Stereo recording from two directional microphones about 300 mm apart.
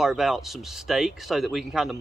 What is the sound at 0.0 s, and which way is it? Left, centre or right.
Speech, centre.